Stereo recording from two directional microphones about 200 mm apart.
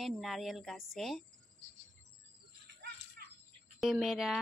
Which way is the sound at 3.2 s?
50° right (ahead or behind).